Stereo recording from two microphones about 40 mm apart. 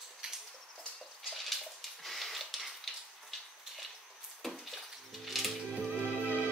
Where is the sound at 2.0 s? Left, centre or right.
Centre.